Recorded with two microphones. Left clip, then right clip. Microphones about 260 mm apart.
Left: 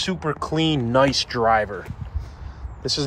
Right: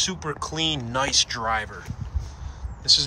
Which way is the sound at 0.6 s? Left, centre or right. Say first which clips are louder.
Left 2 dB; right.